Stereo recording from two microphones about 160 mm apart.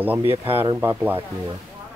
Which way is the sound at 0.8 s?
15° right (ahead or behind).